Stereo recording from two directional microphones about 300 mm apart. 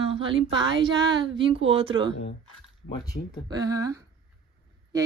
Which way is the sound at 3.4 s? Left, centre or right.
Centre.